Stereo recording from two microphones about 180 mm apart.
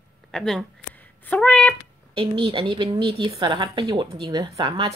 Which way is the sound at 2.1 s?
30° right (ahead or behind).